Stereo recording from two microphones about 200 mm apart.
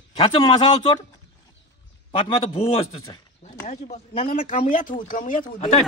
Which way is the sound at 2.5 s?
30° left (ahead or behind).